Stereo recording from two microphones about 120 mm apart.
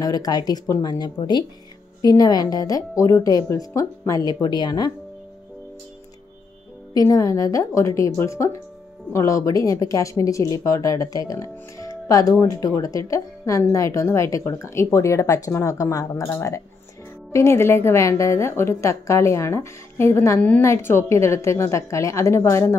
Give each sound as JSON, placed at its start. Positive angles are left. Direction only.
{"t": 0.0, "sound": "speech", "side_deg": 30}
{"t": 6.9, "sound": "speech", "side_deg": 30}